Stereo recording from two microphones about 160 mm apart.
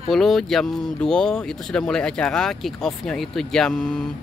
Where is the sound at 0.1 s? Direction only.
Centre (ahead or behind).